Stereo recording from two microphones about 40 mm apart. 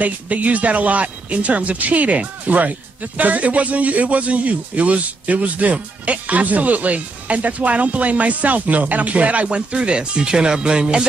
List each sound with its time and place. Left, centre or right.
0.0 s speech: right